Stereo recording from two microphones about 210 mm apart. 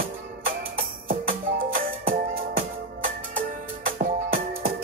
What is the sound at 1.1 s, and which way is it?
Music, 40° right (ahead or behind).